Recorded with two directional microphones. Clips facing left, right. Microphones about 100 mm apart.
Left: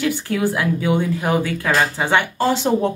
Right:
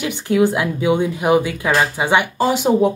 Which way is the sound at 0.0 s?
20° right (ahead or behind).